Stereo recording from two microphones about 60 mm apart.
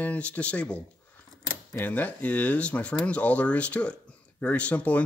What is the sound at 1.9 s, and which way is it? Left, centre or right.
Speech, left.